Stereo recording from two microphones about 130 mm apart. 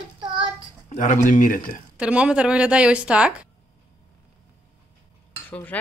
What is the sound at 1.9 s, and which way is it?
A woman's voice, 10° right (ahead or behind).